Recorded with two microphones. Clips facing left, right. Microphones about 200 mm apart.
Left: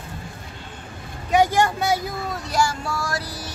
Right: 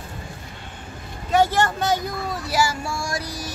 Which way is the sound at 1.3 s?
15° left (ahead or behind).